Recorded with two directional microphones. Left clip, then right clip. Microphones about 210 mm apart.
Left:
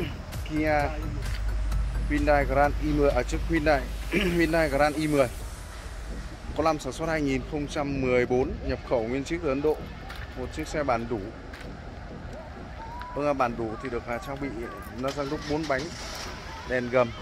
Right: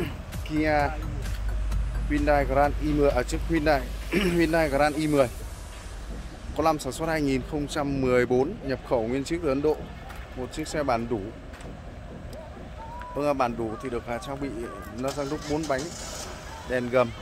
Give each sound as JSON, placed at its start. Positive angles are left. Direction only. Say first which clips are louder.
{"t": 0.0, "sound": "music", "louder": "right 1 dB", "side_deg": -20}
{"t": 2.0, "sound": "speech", "louder": "even", "side_deg": -15}
{"t": 6.5, "sound": "speech", "louder": "right 1 dB", "side_deg": -15}
{"t": 13.1, "sound": "speech", "louder": "right 1 dB", "side_deg": -10}
{"t": 16.7, "sound": "speech", "louder": "right 1 dB", "side_deg": -10}